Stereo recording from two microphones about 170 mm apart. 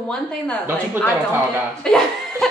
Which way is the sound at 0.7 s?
10° right (ahead or behind).